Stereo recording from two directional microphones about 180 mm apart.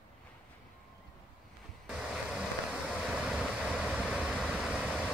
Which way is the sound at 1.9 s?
5° right (ahead or behind).